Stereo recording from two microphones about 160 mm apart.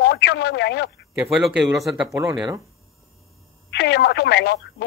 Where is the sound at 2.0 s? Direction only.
15° right (ahead or behind).